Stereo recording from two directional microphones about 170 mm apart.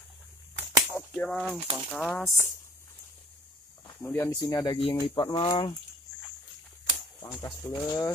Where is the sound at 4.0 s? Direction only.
10° left (ahead or behind).